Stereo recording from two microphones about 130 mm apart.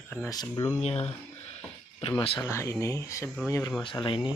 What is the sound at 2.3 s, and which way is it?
Speech, 20° left (ahead or behind).